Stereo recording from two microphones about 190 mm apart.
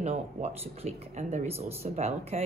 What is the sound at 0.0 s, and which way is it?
A woman's voice, 35° right (ahead or behind).